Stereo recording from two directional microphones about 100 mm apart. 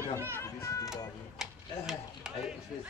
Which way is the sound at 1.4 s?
5° right (ahead or behind).